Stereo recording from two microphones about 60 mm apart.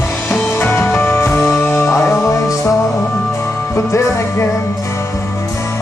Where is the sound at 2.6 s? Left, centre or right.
Left.